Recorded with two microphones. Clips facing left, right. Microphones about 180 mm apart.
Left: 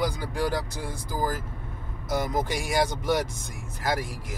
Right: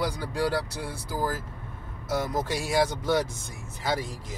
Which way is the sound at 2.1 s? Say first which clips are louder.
Left 1 dB; 15° left (ahead or behind).